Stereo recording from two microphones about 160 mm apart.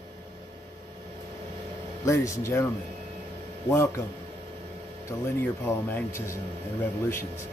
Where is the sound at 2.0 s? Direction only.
20° left (ahead or behind).